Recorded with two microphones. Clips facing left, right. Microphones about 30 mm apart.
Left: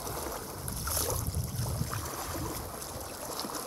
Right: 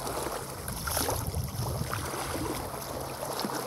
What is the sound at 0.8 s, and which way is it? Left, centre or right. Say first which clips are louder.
Boat: right 4 dB; right.